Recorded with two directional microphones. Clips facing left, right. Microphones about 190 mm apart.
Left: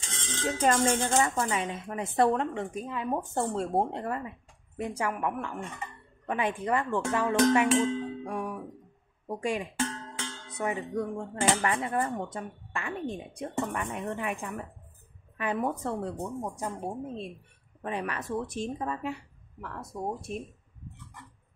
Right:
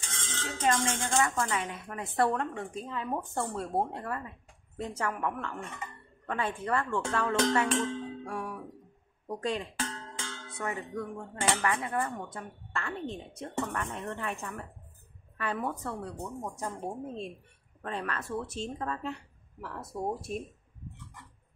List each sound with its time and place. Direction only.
0.0 s music: 20° left (ahead or behind)
0.7 s speech: 40° left (ahead or behind)
1.2 s speech: 25° left (ahead or behind)
4.7 s speech: 10° left (ahead or behind)
11.1 s speech: 30° left (ahead or behind)
16.3 s speech: 15° left (ahead or behind)
17.8 s speech: 15° left (ahead or behind)
19.6 s speech: 5° right (ahead or behind)